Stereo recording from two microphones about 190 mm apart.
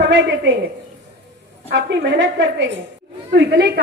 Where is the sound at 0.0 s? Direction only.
65° right (ahead or behind).